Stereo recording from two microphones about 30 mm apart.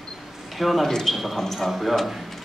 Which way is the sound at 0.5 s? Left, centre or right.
Centre.